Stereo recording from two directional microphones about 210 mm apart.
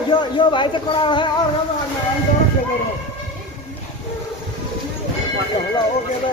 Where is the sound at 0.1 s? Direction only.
20° left (ahead or behind).